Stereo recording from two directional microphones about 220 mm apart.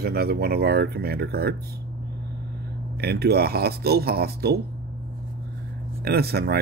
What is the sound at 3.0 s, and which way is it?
Speech, 45° right (ahead or behind).